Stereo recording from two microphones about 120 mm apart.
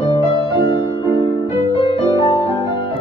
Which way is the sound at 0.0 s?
40° left (ahead or behind).